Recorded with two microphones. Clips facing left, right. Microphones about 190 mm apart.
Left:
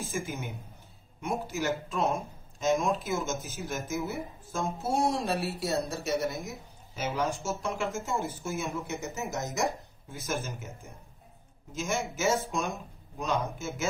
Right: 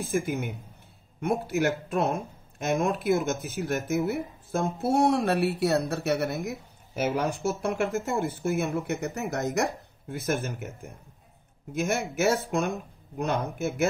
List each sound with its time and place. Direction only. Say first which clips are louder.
0.0 s speech: right 7 dB; 60° right (ahead or behind)